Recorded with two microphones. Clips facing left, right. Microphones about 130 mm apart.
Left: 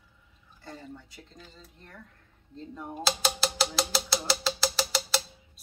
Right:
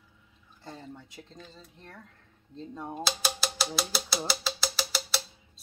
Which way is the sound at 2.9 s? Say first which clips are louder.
Left 4 dB; centre (ahead or behind).